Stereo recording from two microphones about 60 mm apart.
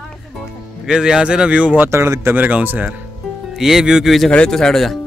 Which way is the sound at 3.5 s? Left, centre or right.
Centre.